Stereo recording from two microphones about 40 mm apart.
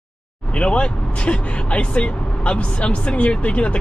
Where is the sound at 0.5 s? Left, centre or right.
Left.